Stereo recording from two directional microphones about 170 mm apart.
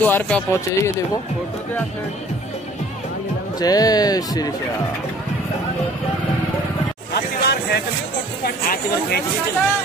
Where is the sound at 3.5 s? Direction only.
20° left (ahead or behind).